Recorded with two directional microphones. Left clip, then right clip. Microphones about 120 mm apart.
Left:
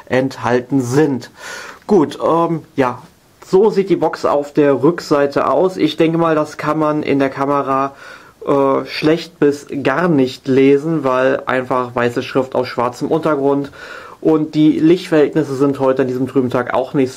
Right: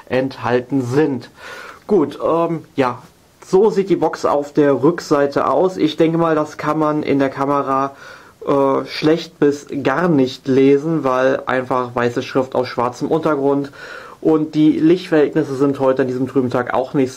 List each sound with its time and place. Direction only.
0.1 s speech: 35° left (ahead or behind)
3.4 s speech: 5° left (ahead or behind)